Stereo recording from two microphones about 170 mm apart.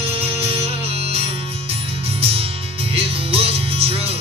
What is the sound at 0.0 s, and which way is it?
Music, 35° right (ahead or behind).